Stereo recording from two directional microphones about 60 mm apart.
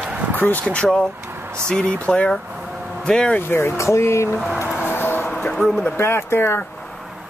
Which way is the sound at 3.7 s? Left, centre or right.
Left.